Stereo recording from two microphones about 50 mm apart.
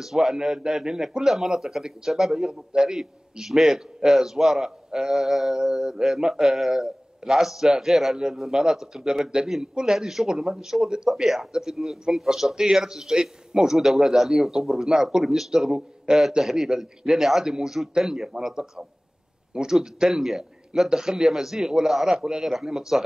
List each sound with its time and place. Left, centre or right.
0.0 s a man's voice: centre
11.1 s a man's voice: centre